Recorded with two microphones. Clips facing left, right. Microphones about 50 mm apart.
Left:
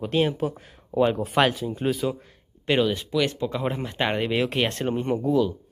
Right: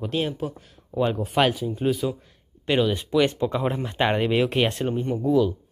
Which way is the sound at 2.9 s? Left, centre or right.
Centre.